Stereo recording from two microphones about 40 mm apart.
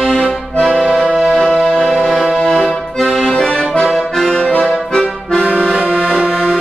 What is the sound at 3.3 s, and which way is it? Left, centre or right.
Accordion, centre.